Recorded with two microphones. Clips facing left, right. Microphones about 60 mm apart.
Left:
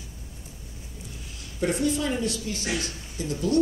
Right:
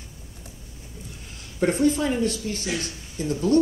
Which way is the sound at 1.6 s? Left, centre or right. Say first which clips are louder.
Right 4 dB; right.